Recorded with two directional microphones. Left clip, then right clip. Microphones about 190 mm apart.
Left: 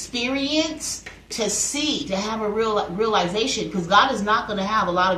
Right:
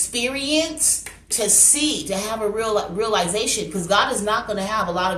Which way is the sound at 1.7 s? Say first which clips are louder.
Right 2 dB; 50° right (ahead or behind).